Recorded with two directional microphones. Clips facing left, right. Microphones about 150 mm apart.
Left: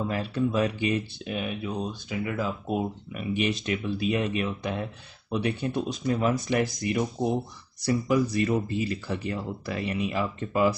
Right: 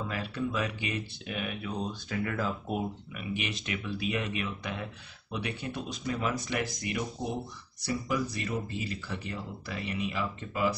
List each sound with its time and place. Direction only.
0.1 s speech: 35° left (ahead or behind); by 2.8 s 15° left (ahead or behind)
3.1 s speech: 40° left (ahead or behind)